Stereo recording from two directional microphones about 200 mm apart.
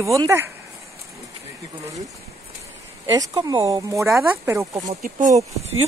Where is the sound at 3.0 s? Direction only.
20° right (ahead or behind).